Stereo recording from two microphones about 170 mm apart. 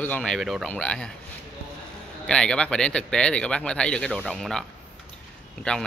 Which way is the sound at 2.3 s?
5° left (ahead or behind).